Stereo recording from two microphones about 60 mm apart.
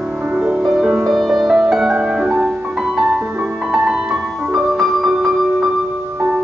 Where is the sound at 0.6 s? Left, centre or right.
Centre.